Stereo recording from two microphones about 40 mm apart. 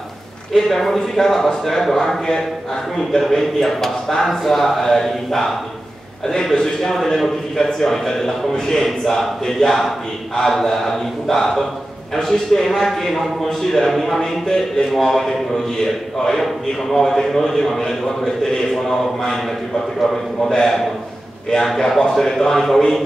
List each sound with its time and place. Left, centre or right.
0.6 s a man's voice: centre
20.4 s a man's voice: centre